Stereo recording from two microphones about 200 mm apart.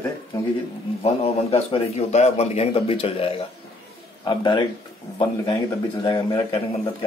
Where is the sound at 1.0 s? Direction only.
30° left (ahead or behind).